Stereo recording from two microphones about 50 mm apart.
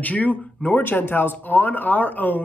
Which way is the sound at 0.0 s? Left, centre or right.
Left.